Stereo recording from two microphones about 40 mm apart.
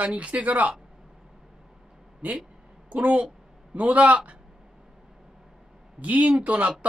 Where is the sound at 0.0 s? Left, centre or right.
Right.